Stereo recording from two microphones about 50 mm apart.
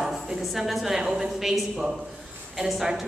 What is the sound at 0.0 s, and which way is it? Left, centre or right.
A woman's voice, centre.